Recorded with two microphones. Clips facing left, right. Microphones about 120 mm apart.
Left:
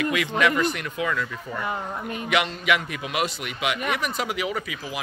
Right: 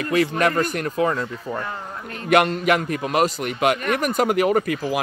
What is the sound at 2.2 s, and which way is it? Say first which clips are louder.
Speech: right 7 dB; 50° right (ahead or behind).